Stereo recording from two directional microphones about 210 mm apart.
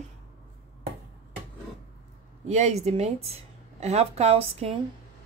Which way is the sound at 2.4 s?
30° right (ahead or behind).